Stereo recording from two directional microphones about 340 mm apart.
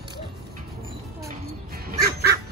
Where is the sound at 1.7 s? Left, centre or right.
Right.